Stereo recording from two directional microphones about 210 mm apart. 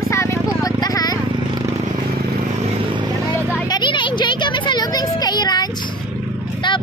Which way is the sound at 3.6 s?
20° left (ahead or behind).